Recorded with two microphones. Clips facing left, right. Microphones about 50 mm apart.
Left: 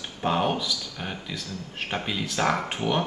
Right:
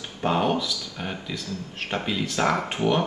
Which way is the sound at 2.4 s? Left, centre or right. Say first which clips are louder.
Right 1 dB; right.